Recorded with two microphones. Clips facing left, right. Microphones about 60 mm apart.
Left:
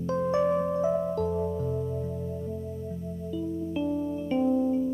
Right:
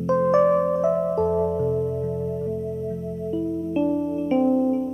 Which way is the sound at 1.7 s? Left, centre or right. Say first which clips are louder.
Right 7 dB; right.